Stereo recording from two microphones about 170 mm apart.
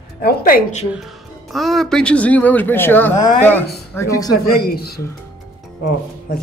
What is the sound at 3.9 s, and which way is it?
Speech, 15° left (ahead or behind).